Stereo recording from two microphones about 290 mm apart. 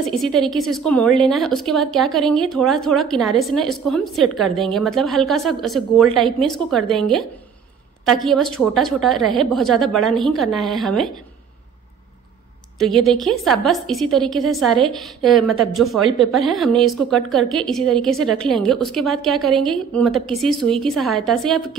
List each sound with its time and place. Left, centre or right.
0.0 s a woman's voice: centre
12.7 s a woman's voice: centre